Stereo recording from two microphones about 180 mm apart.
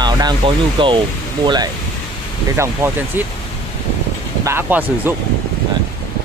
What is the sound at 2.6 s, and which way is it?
Speech, 10° right (ahead or behind).